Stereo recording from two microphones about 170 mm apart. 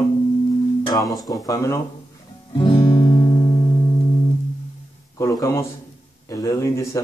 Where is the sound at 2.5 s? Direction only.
30° left (ahead or behind).